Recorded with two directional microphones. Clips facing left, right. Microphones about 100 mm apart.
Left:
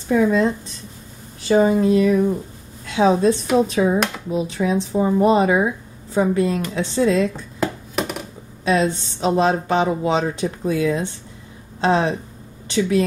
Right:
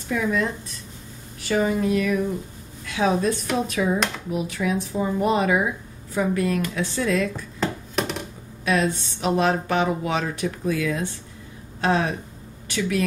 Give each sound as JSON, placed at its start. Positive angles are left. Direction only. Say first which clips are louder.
{"t": 0.1, "sound": "speech", "louder": "left 7 dB", "side_deg": 30}
{"t": 7.6, "sound": "a sound", "louder": "left 2 dB", "side_deg": 5}
{"t": 8.6, "sound": "speech", "louder": "left 4 dB", "side_deg": 25}